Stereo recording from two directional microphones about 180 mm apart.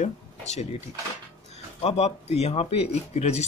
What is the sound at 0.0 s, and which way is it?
Speech, 40° left (ahead or behind).